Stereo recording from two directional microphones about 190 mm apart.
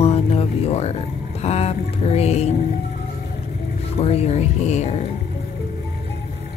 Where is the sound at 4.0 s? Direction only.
35° left (ahead or behind).